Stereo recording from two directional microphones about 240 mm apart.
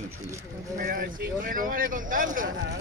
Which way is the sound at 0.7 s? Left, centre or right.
Right.